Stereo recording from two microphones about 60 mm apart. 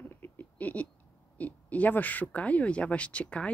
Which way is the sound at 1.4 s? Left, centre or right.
Left.